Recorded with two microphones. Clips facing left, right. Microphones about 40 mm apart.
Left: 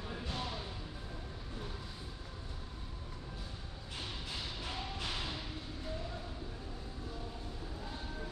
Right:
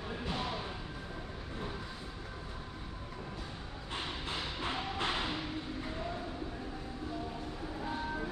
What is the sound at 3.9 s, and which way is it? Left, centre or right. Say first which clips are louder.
Music: right 5 dB; right.